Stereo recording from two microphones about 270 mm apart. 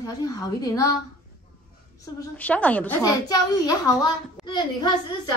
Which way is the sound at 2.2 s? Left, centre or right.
Centre.